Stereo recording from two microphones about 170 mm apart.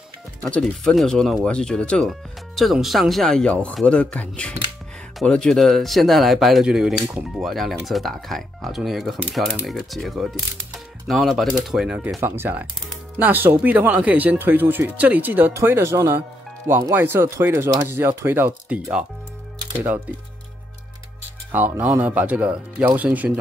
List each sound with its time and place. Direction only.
0.4 s speech: 5° left (ahead or behind)
21.5 s speech: 10° right (ahead or behind)